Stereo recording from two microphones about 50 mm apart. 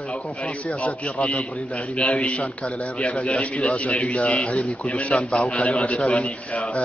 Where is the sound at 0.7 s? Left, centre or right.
Left.